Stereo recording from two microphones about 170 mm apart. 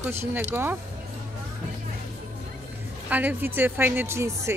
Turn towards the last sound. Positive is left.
turn(degrees=-15)  # may be behind; listen again after turning